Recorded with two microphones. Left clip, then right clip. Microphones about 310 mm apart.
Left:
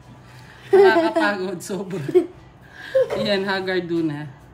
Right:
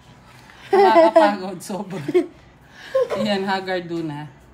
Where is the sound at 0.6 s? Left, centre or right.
Right.